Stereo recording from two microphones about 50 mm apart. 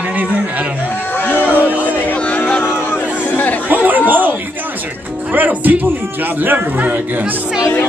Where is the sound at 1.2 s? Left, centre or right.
Left.